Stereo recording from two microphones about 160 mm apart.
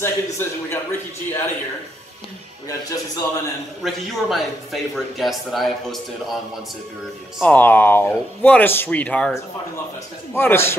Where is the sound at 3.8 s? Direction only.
Centre (ahead or behind).